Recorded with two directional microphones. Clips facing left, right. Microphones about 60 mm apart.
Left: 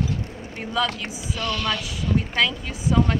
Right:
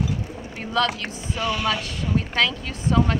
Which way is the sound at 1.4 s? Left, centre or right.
Centre.